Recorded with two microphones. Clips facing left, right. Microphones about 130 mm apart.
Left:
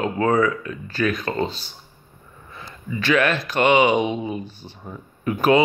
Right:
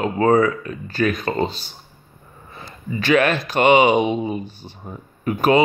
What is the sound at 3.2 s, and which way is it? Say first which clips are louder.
Speech: right 2 dB; 15° right (ahead or behind).